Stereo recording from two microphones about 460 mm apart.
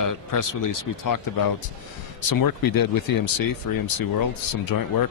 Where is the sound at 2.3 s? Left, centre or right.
Left.